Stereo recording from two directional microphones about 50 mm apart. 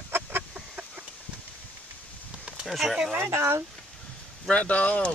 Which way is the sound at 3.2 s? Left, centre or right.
Right.